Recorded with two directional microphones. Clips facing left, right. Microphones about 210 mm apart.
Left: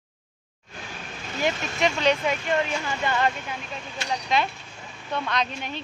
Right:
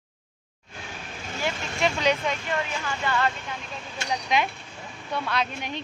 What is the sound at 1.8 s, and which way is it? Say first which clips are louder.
Speech: left 1 dB; 10° right (ahead or behind).